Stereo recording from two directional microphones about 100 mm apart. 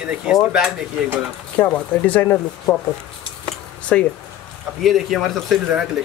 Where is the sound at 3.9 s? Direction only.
15° left (ahead or behind).